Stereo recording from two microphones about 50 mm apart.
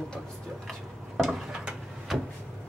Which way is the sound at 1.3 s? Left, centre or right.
Centre.